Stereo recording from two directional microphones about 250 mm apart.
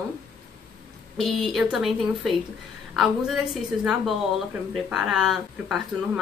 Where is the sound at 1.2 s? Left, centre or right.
Centre.